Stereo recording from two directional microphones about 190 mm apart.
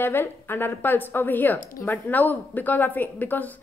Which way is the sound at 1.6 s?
45° left (ahead or behind).